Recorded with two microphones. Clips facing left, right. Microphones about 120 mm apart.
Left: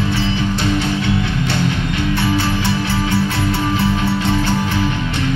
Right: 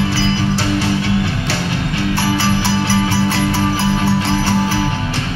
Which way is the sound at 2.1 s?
75° right (ahead or behind).